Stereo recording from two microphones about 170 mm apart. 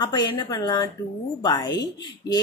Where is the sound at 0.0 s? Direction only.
25° left (ahead or behind).